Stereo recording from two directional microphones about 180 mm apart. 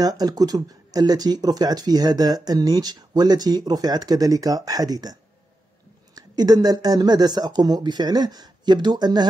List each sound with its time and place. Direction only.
0.0 s speech: 20° right (ahead or behind)
6.1 s speech: 20° right (ahead or behind)